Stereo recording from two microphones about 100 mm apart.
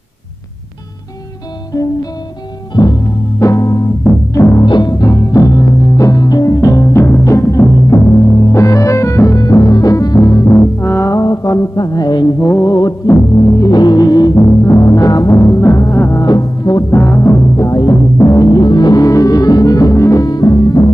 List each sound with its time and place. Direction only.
1.7 s music: 40° left (ahead or behind)
2.7 s timpani: 40° left (ahead or behind)
4.3 s music: 35° left (ahead or behind)
4.6 s music: 50° left (ahead or behind)
5.0 s music: 35° left (ahead or behind)
10.5 s music: 25° left (ahead or behind); by 12.4 s 45° left (ahead or behind)
12.4 s music: 30° left (ahead or behind)
16.3 s music: 40° left (ahead or behind)
20.2 s music: 40° left (ahead or behind)